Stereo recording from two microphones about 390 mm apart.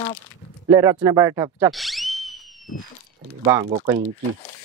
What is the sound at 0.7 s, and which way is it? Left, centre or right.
Speech, centre.